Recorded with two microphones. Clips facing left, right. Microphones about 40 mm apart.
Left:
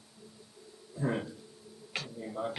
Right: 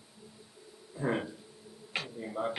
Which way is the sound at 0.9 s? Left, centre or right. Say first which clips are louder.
Right 1 dB; centre.